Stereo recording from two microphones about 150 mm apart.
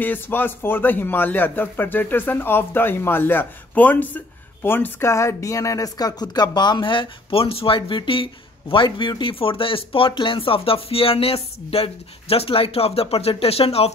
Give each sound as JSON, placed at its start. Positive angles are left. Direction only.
{"t": 0.0, "sound": "a man's voice", "side_deg": 15}